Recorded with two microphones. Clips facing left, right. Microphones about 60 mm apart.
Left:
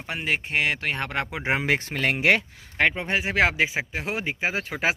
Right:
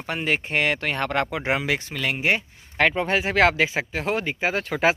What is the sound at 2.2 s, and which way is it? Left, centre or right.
Speech, left.